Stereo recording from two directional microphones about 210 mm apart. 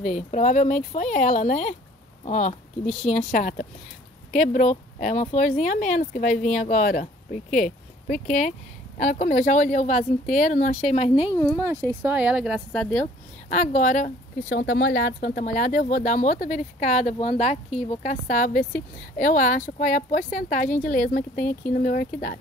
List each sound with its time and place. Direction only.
0.0 s speech: 35° left (ahead or behind)
11.9 s speech: 10° right (ahead or behind); by 13.0 s 5° left (ahead or behind)
13.0 s speech: 35° left (ahead or behind)
14.5 s speech: 50° left (ahead or behind)